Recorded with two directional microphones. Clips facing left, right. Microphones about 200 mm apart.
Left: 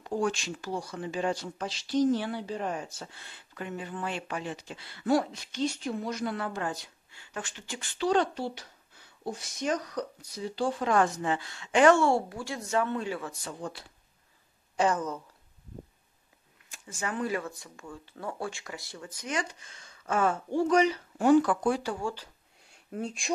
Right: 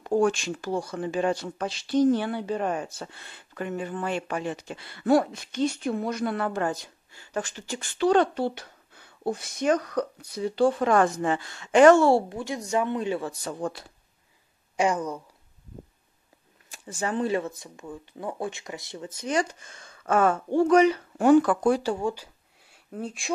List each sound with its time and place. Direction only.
0.1 s speech: 50° right (ahead or behind)
12.3 s speech: 20° right (ahead or behind)
13.2 s speech: 40° right (ahead or behind)
14.8 s speech: 15° right (ahead or behind)
16.6 s speech: 35° right (ahead or behind)
19.3 s speech: 50° right (ahead or behind)
22.0 s speech: 10° right (ahead or behind)
22.8 s speech: centre (ahead or behind)